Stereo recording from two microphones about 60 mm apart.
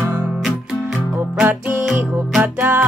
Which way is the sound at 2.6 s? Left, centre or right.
Right.